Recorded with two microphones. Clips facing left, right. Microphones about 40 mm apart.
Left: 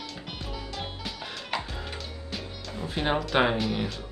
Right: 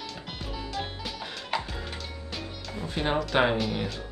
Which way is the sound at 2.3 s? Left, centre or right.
Centre.